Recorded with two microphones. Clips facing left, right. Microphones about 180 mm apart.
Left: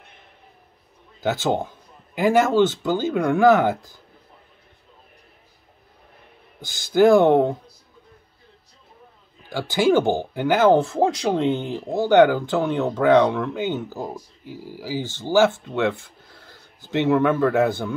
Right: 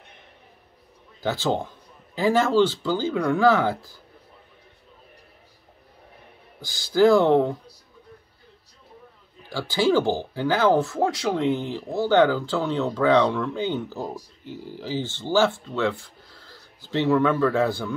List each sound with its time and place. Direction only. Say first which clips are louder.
1.2 s speech: left 2 dB; 15° left (ahead or behind)
6.6 s speech: left 2 dB; 20° left (ahead or behind)
9.5 s speech: left 3 dB; 15° left (ahead or behind)